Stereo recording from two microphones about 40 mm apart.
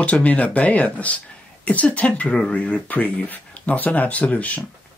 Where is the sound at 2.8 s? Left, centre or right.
Left.